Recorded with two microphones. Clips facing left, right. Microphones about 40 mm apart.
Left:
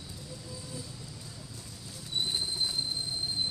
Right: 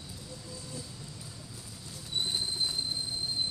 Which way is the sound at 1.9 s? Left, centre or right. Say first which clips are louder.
Even; centre.